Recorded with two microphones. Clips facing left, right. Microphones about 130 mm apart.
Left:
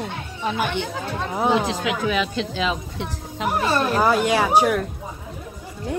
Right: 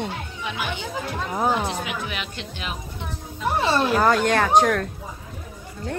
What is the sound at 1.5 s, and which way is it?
Speech, 90° left.